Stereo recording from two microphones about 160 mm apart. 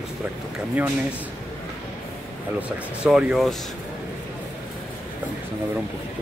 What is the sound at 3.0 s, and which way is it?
Speech, 5° right (ahead or behind).